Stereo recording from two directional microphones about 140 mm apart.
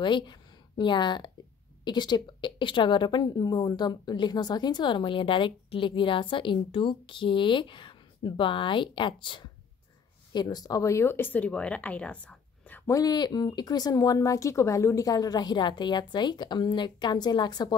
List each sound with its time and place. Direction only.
0.0 s a woman's voice: 35° left (ahead or behind); by 12.9 s 15° left (ahead or behind)
12.9 s speech: 30° left (ahead or behind)